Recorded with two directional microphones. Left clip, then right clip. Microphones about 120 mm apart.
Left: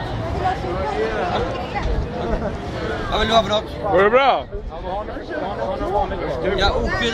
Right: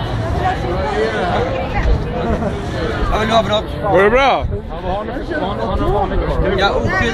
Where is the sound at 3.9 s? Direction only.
Centre (ahead or behind).